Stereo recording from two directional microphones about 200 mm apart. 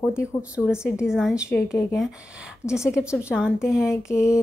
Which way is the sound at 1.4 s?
15° left (ahead or behind).